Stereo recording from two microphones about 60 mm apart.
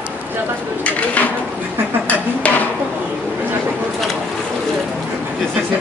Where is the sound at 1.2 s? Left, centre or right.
Left.